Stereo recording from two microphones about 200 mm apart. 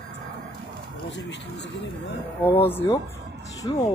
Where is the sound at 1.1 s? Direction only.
60° left (ahead or behind).